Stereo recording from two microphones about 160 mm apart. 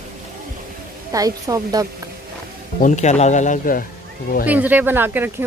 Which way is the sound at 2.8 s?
50° left (ahead or behind).